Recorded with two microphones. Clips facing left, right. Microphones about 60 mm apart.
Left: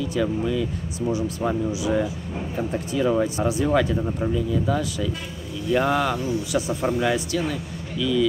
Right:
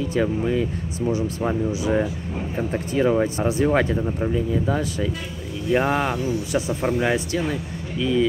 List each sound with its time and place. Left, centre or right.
0.0 s speech: right
1.7 s speech: right